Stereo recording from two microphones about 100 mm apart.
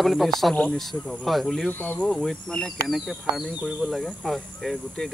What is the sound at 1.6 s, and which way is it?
Insect, 15° left (ahead or behind).